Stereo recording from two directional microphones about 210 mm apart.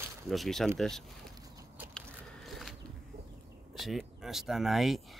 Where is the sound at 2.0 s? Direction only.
Centre (ahead or behind).